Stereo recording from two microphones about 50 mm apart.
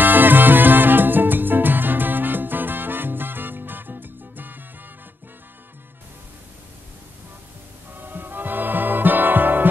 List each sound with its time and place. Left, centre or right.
0.0 s music: right
7.9 s music: right